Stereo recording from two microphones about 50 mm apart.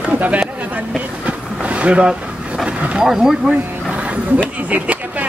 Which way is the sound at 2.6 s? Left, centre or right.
Right.